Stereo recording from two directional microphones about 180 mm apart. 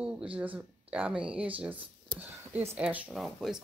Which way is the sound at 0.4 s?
10° right (ahead or behind).